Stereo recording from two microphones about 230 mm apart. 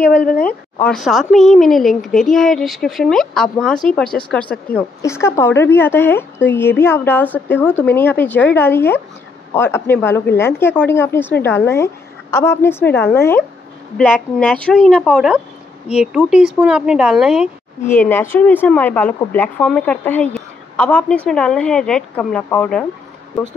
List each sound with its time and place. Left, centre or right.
0.0 s speech: left
0.5 s a woman's voice: centre
17.8 s a woman's voice: centre